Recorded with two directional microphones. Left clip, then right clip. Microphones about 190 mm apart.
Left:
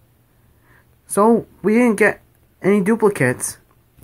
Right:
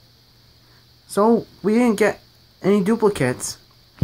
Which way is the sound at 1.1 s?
10° left (ahead or behind).